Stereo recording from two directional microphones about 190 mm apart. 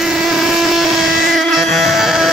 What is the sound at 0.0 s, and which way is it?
Vehicle, centre (ahead or behind).